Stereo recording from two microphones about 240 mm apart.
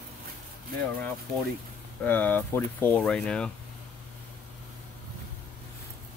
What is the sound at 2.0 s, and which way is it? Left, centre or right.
Speech, centre.